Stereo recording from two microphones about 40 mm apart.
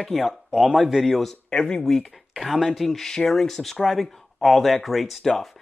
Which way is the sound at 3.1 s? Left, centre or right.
Centre.